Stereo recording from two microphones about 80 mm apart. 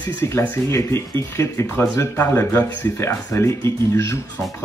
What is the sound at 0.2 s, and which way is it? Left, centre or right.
Speech, left.